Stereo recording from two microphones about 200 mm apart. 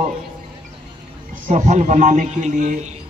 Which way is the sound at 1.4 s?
35° right (ahead or behind).